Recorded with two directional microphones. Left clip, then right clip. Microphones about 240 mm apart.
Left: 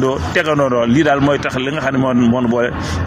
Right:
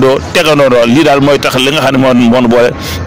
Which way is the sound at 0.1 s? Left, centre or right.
Right.